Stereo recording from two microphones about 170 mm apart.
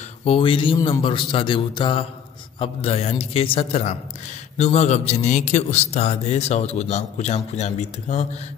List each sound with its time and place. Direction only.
0.2 s a man's voice: 35° left (ahead or behind)
0.7 s a man's voice: 20° left (ahead or behind)
1.0 s a man's voice: 30° left (ahead or behind)